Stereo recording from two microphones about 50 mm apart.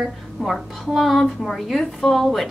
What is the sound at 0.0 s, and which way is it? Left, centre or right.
A woman's voice, centre.